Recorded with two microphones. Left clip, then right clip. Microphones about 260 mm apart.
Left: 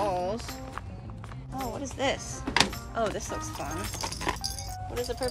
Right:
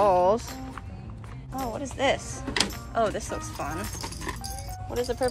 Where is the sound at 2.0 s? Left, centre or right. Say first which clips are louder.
Right 5 dB; centre.